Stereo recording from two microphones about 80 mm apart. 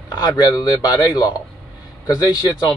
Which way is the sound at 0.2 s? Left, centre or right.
Left.